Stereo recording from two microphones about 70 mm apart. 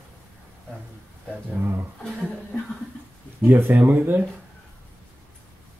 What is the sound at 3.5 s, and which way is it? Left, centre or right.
Speech, right.